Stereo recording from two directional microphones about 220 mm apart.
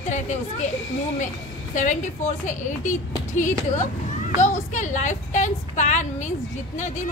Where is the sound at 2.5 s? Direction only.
35° left (ahead or behind).